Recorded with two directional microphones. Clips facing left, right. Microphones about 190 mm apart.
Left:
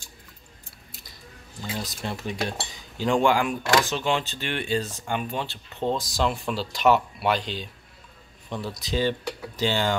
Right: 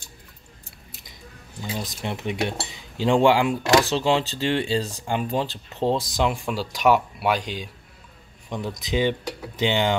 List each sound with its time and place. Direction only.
1.6 s speech: 15° right (ahead or behind)
6.1 s speech: 15° right (ahead or behind)